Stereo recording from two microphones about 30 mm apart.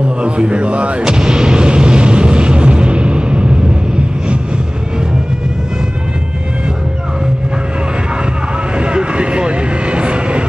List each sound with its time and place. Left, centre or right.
0.2 s speech: right
1.0 s artillery fire: right
8.7 s vehicle: right